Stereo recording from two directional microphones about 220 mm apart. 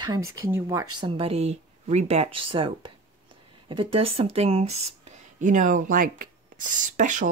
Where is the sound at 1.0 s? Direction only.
25° right (ahead or behind).